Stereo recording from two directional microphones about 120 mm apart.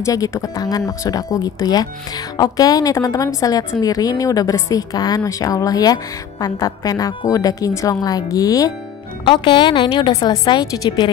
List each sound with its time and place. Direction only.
0.0 s speech: 25° left (ahead or behind)
9.2 s speech: 40° left (ahead or behind)